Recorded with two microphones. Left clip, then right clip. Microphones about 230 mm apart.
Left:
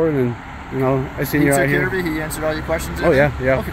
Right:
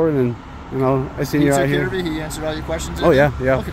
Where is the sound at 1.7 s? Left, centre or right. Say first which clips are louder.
Left 2 dB; centre.